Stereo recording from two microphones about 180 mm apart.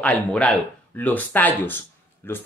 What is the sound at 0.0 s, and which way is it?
Speech, 5° left (ahead or behind).